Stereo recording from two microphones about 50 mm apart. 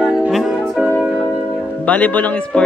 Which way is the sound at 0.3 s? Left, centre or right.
Centre.